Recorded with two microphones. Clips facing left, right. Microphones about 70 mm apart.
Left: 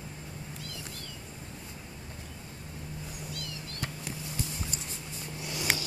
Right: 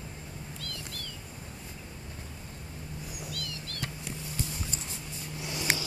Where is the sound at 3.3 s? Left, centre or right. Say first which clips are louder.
Right 1 dB; left.